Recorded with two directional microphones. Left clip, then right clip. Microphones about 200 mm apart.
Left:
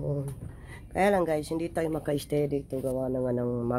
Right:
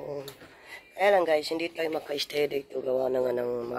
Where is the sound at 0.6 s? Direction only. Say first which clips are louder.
Right 1 dB; 5° left (ahead or behind).